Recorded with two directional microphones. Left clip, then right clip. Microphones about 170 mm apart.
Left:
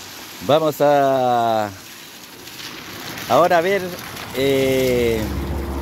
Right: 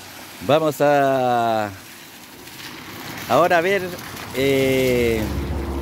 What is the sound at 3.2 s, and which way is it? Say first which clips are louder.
Speech: left 1 dB; 10° right (ahead or behind).